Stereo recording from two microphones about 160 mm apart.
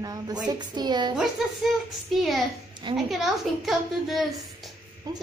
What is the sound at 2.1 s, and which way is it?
A woman's voice, centre (ahead or behind).